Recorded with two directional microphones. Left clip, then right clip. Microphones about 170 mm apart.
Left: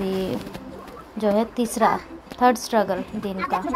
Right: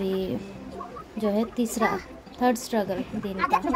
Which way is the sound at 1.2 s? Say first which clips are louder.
Left 5 dB; 5° right (ahead or behind).